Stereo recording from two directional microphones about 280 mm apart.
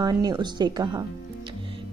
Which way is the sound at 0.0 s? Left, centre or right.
Centre.